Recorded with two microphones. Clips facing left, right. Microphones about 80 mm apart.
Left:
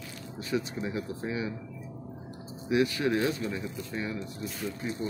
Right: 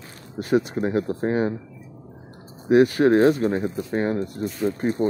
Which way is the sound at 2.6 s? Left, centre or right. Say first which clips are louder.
Right 10 dB; right.